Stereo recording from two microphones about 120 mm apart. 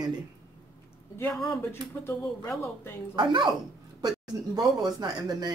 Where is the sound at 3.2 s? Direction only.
40° right (ahead or behind).